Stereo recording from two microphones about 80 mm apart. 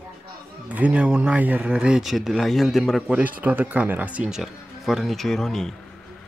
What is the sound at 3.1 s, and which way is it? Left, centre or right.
Speech, centre.